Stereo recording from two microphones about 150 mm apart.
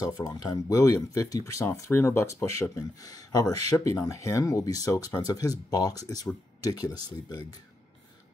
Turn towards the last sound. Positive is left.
turn(degrees=25)  # may be behind; listen again after turning